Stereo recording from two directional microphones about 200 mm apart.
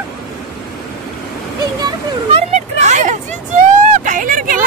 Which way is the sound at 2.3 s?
35° right (ahead or behind).